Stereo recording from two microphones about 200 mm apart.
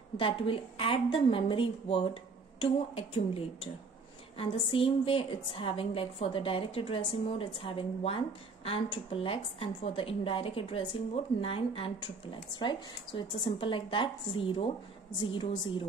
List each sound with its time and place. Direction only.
0.2 s a woman's voice: 25° left (ahead or behind)